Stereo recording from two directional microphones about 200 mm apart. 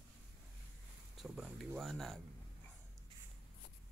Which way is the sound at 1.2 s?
Centre (ahead or behind).